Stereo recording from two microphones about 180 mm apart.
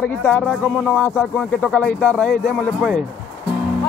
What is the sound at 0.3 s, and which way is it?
Speech, 5° left (ahead or behind).